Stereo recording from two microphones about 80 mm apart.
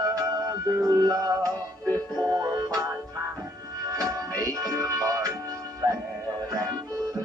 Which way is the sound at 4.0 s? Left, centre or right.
Right.